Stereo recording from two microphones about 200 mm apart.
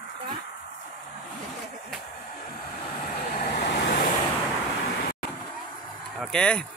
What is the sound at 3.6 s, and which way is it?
Vehicle, 60° left (ahead or behind).